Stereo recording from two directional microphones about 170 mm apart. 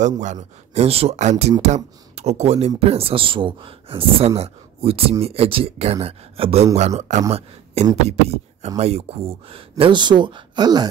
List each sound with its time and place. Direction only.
0.2 s speech: 45° right (ahead or behind); by 10.9 s 25° right (ahead or behind)